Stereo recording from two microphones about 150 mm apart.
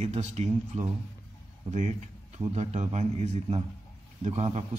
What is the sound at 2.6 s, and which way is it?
A man's voice, 50° right (ahead or behind).